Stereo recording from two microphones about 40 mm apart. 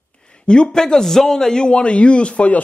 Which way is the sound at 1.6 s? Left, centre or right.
Left.